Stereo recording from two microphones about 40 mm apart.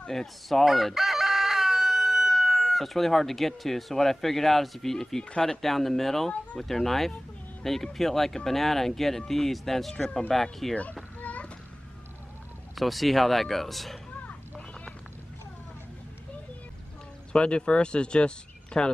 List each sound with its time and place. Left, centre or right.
0.1 s speech: centre
0.7 s chicken: centre
5.4 s speech: centre
11.1 s a sound: left
12.7 s speech: centre
17.3 s speech: left